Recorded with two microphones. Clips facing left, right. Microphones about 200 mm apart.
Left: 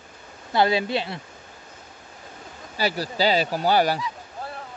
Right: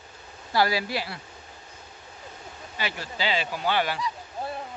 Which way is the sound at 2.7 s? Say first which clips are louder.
Left 8 dB; 35° left (ahead or behind).